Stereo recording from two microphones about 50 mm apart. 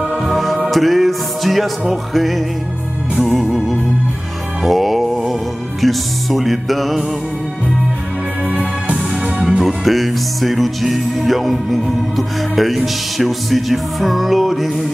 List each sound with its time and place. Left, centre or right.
0.0 s music: centre
8.5 s music: right
9.4 s music: centre